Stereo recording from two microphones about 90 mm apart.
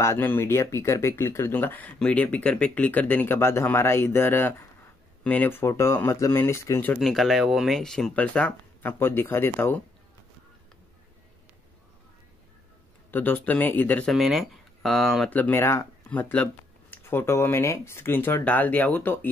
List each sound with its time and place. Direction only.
0.0 s speech: 25° left (ahead or behind)
5.6 s speech: 30° left (ahead or behind)
7.0 s speech: centre (ahead or behind)
8.1 s speech: 15° left (ahead or behind)
9.0 s speech: 25° left (ahead or behind)
13.1 s speech: 20° left (ahead or behind)
14.0 s speech: centre (ahead or behind)
15.2 s speech: 15° left (ahead or behind)
16.1 s speech: 20° left (ahead or behind)